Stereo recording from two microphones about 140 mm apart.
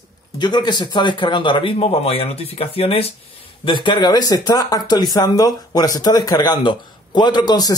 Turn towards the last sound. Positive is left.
turn(degrees=30)  # may be behind; listen again after turning